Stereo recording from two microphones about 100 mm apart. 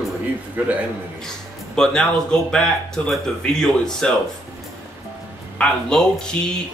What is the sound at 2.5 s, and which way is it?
Speech, 5° left (ahead or behind).